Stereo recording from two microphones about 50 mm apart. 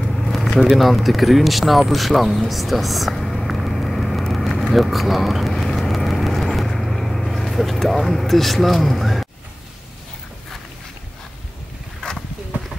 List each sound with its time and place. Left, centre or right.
0.1 s a sound: centre
0.7 s speech: centre
5.5 s vehicle: centre
12.5 s run: right